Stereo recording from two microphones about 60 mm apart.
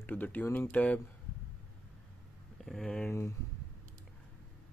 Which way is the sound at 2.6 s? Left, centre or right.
Centre.